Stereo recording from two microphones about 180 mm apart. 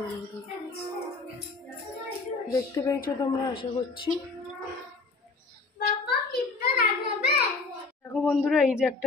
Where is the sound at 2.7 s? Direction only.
15° left (ahead or behind).